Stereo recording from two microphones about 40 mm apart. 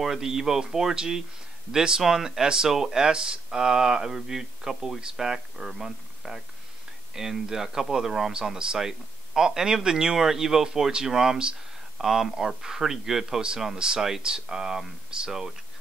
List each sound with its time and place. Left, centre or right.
0.0 s speech: centre